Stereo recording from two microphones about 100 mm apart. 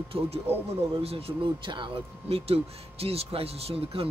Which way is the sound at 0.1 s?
70° right (ahead or behind).